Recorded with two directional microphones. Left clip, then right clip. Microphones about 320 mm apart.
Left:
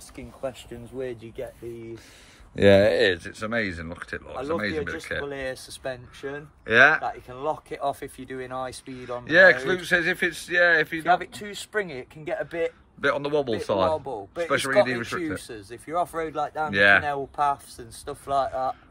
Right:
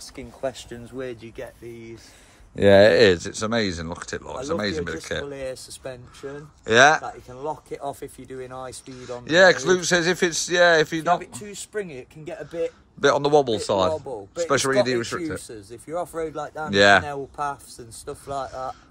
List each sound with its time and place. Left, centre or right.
0.1 s speech: right
2.5 s speech: centre
2.8 s speech: right; by 4.9 s centre
5.2 s speech: left
6.6 s speech: centre
7.2 s speech: left
9.2 s speech: centre
11.1 s speech: centre
13.0 s speech: centre
15.4 s speech: left
16.7 s speech: centre
17.0 s speech: left